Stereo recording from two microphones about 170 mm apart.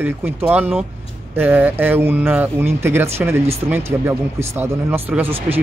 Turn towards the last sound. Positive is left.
turn(degrees=-15)  # may be behind; listen again after turning